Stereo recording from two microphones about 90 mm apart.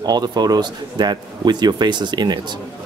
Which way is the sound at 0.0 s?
50° right (ahead or behind).